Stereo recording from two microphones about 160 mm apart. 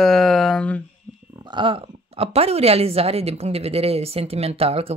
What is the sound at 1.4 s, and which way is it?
Speech, 30° right (ahead or behind).